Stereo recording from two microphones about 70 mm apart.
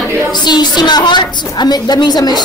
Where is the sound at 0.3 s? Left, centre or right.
Left.